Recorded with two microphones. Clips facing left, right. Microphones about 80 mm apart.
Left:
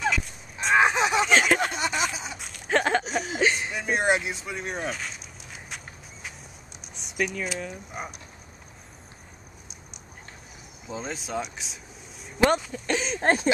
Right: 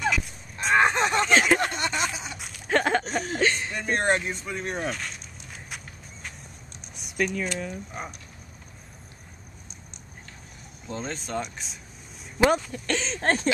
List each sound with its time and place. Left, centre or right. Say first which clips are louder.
0.0 s a sound: even; centre
7.0 s speech: right 1 dB; centre
10.9 s speech: even; centre